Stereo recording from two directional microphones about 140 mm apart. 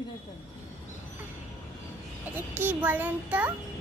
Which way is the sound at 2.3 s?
15° right (ahead or behind).